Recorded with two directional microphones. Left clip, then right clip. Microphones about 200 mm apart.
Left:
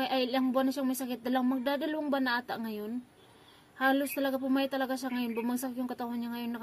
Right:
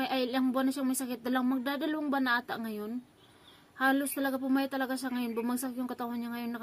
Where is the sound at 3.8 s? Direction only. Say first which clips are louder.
Left 1 dB; centre (ahead or behind).